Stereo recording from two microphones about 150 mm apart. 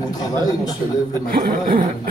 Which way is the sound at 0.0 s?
25° left (ahead or behind).